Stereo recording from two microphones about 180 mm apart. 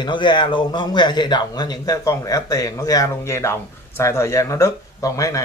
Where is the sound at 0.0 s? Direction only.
25° left (ahead or behind).